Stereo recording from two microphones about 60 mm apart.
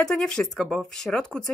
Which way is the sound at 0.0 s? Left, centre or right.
Centre.